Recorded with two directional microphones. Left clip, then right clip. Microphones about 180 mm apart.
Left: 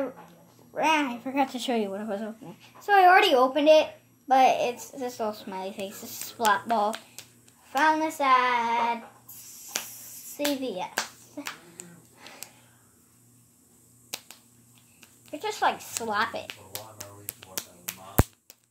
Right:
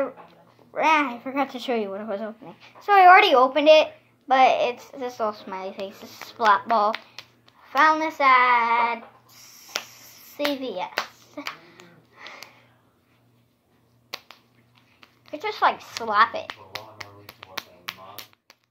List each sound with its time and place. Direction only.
0.7 s speech: 40° left (ahead or behind)
9.5 s finger snapping: 40° left (ahead or behind)
14.1 s finger snapping: 50° left (ahead or behind)
15.3 s speech: 40° left (ahead or behind)
16.3 s finger snapping: 40° left (ahead or behind)